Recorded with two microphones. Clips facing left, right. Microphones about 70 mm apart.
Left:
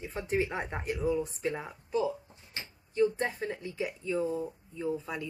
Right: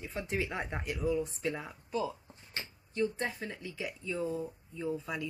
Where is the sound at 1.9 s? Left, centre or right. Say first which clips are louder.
Left 5 dB; centre.